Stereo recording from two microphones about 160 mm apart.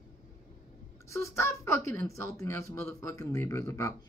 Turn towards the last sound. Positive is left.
turn(degrees=20)  # may be behind; listen again after turning